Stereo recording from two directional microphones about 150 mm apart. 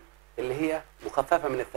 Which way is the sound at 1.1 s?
35° right (ahead or behind).